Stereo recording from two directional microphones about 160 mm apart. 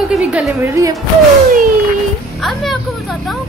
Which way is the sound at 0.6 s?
20° right (ahead or behind).